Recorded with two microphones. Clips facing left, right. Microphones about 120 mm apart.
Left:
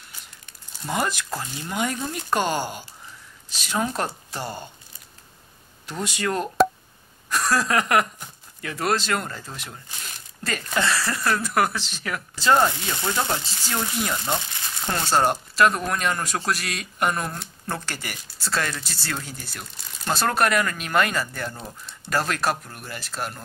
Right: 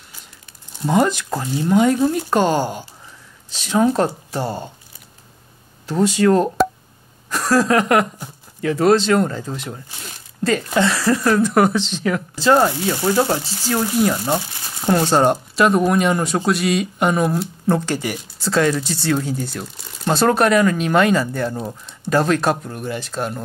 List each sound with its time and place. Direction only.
0.9 s speech: 5° left (ahead or behind)
1.3 s speech: 15° right (ahead or behind)
6.6 s a sound: centre (ahead or behind)
7.2 s a sound: 15° right (ahead or behind)
8.5 s speech: 5° right (ahead or behind)
9.3 s speech: 15° right (ahead or behind)
11.5 s speech: centre (ahead or behind)
12.4 s speech: 10° right (ahead or behind)
15.1 s speech: centre (ahead or behind)